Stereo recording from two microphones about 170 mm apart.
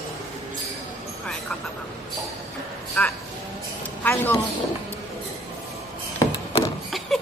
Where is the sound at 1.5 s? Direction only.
5° left (ahead or behind).